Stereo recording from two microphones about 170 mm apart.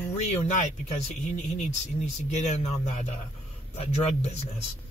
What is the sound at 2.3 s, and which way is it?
A man's voice, 40° left (ahead or behind).